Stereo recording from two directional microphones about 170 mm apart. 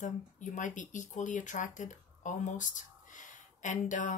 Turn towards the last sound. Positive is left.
turn(degrees=45)  # may be behind; listen again after turning